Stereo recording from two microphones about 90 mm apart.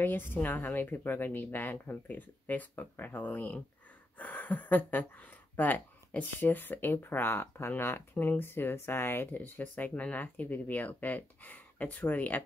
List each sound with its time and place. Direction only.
0.0 s speech: 20° left (ahead or behind)